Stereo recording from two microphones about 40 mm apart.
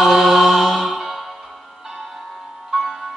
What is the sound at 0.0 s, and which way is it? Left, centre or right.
Music, centre.